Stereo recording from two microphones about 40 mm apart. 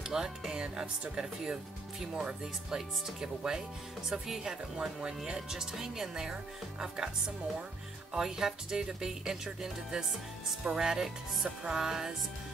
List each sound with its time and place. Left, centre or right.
0.0 s speech: centre